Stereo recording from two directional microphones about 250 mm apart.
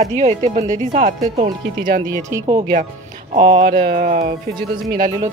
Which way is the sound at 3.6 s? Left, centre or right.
Right.